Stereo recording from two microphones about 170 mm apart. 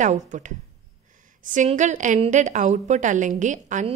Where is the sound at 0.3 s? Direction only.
45° right (ahead or behind).